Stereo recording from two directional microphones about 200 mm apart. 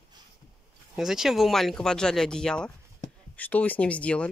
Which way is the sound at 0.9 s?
5° right (ahead or behind).